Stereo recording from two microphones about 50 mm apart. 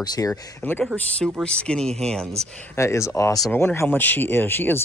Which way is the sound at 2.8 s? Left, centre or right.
Left.